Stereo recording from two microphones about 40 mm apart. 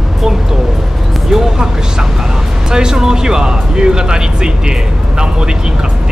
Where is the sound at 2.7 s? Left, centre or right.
Centre.